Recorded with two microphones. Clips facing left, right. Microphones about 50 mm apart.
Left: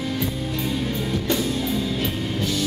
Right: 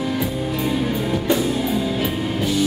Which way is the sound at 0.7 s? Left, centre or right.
Centre.